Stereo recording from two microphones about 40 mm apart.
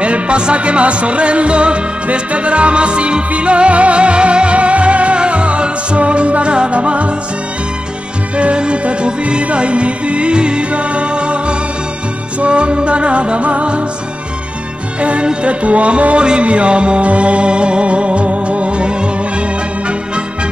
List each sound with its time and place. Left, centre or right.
0.0 s music: right
8.4 s music: right
15.0 s music: right